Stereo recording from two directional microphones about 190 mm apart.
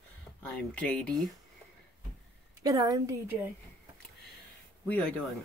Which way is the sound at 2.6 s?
20° right (ahead or behind).